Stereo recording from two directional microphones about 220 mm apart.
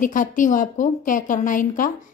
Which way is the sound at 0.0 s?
35° left (ahead or behind).